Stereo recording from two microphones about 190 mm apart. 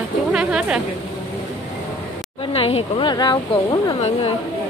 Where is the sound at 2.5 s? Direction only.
30° left (ahead or behind).